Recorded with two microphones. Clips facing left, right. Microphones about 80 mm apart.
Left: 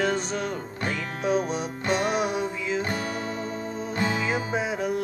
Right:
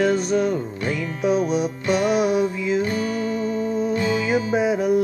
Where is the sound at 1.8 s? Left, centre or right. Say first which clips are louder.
Right 4 dB; left.